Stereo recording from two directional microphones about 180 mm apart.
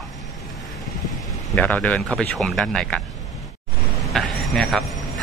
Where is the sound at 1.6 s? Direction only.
10° left (ahead or behind).